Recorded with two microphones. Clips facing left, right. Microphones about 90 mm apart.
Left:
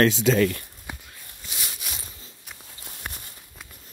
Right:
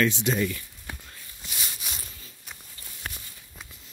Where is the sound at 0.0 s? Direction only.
90° left.